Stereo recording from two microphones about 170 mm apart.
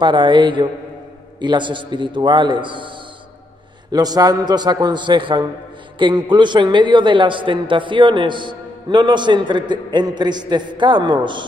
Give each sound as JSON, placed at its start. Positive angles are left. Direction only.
{"t": 0.0, "sound": "a man's voice", "side_deg": -25}
{"t": 3.9, "sound": "a man's voice", "side_deg": -25}